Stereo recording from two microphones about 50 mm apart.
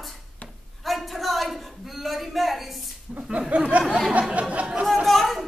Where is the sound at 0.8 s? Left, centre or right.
Centre.